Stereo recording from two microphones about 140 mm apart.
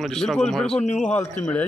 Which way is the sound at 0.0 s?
Centre (ahead or behind).